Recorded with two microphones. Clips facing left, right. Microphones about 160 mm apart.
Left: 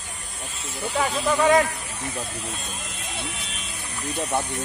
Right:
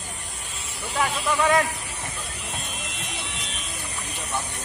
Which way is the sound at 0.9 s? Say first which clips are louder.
Left 2 dB; 30° left (ahead or behind).